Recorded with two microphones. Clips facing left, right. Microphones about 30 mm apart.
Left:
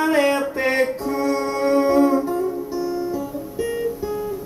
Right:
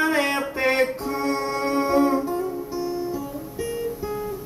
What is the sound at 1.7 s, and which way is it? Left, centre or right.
Music, centre.